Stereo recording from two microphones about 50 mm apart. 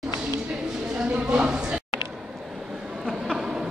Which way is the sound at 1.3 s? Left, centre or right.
Centre.